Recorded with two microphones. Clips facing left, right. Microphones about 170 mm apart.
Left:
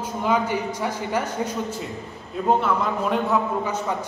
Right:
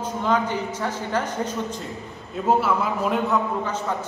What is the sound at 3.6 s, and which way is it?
Speech, 10° left (ahead or behind).